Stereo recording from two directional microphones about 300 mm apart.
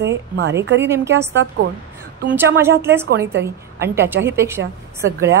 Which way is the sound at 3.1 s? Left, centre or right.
Right.